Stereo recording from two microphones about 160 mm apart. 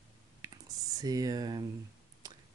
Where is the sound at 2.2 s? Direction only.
25° right (ahead or behind).